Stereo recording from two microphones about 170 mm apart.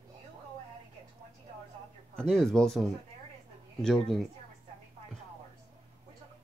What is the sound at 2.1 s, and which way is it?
Speech, 5° left (ahead or behind).